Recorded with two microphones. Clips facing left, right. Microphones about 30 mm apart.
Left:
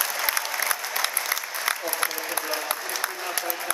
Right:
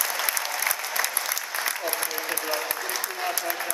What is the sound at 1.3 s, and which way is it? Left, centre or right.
Applause, left.